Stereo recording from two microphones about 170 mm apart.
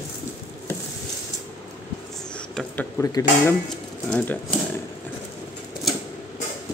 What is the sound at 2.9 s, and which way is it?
Speech, 15° left (ahead or behind).